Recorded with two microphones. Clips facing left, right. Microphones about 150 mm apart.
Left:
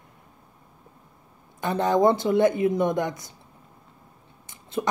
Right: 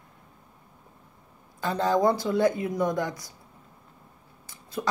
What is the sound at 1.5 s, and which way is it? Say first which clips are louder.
Speech: left 2 dB; 20° left (ahead or behind).